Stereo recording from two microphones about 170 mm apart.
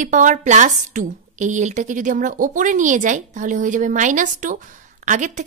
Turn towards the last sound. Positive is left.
turn(degrees=-45)  # may be behind; listen again after turning